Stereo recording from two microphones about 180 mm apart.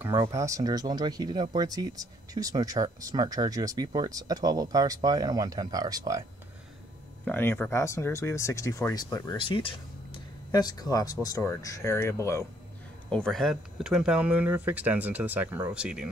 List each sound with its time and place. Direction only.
0.0 s speech: 15° right (ahead or behind)
7.2 s speech: 10° left (ahead or behind)
9.4 s speech: 30° left (ahead or behind)
13.1 s speech: 5° left (ahead or behind)